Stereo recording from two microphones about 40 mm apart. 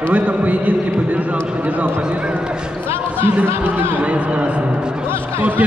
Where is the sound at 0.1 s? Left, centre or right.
Right.